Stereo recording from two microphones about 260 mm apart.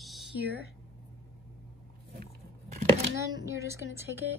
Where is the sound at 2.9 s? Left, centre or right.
Centre.